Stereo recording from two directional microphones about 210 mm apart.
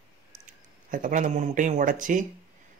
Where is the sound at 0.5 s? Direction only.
40° right (ahead or behind).